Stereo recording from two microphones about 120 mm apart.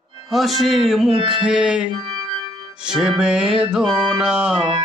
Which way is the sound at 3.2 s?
5° right (ahead or behind).